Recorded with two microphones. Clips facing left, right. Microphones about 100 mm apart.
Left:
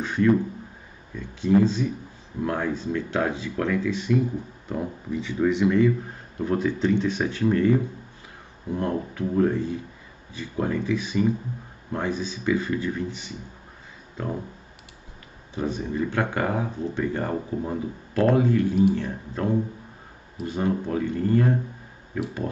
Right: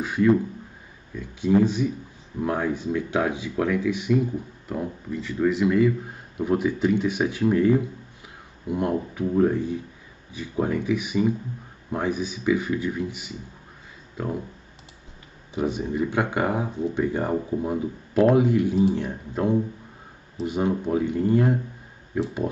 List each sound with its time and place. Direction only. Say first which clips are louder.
0.0 s speech: right 1 dB; 10° right (ahead or behind)
4.6 s speech: left 1 dB; centre (ahead or behind)
15.5 s speech: right 2 dB; 15° right (ahead or behind)